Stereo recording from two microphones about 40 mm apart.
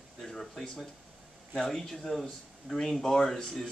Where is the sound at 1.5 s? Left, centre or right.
Centre.